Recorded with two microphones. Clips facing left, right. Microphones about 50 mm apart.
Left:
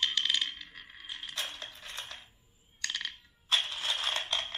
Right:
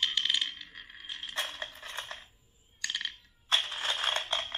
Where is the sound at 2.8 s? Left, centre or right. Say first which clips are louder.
Right 1 dB; centre.